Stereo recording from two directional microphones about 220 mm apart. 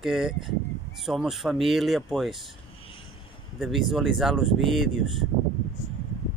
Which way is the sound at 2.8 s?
25° left (ahead or behind).